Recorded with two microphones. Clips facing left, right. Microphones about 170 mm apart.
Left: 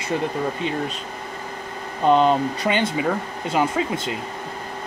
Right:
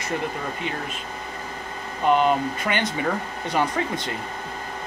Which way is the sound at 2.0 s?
30° left (ahead or behind).